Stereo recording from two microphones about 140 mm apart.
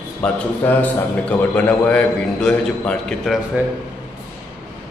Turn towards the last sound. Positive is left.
turn(degrees=-10)  # may be behind; listen again after turning